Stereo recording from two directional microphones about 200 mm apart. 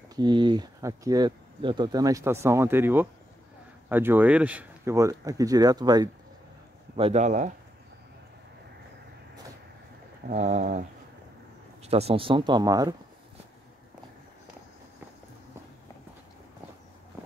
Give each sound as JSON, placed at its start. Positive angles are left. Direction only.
{"t": 0.1, "sound": "speech", "side_deg": -20}
{"t": 7.0, "sound": "speech", "side_deg": -30}
{"t": 10.2, "sound": "speech", "side_deg": -35}